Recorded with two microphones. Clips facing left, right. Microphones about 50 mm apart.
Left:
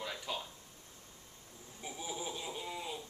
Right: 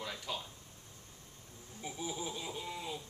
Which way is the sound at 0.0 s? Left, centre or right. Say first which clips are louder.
Left 1 dB; centre.